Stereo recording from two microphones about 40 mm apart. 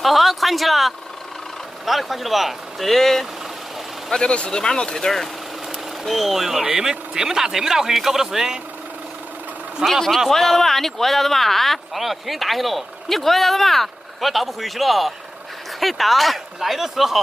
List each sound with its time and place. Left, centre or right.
0.0 s speech: centre
4.1 s speech: left
5.0 s speech: centre
9.9 s speech: centre